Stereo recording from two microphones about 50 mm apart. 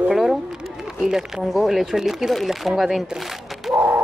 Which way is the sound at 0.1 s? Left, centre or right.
Centre.